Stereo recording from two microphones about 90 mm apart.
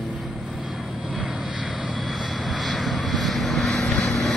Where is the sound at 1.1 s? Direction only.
Centre (ahead or behind).